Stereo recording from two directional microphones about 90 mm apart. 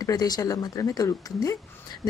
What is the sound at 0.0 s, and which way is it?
Speech, 45° left (ahead or behind).